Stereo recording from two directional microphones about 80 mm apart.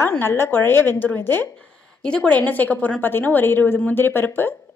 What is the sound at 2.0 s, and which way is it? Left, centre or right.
A woman's voice, centre.